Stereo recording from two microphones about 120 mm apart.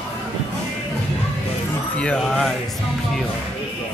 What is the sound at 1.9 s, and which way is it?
Speech, 10° left (ahead or behind).